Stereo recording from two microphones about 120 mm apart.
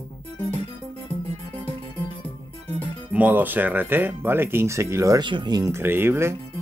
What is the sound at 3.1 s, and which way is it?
Speech, 15° right (ahead or behind).